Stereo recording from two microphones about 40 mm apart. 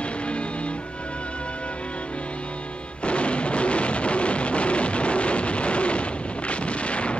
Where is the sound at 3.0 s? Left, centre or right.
Left.